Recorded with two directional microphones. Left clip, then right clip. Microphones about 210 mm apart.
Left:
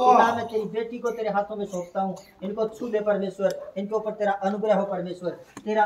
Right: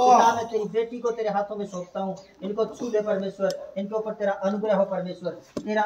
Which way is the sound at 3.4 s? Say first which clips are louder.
Left 1 dB; 50° left (ahead or behind).